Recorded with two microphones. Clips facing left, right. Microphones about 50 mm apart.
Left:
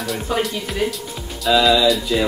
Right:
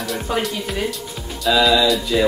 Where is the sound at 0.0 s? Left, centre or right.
Centre.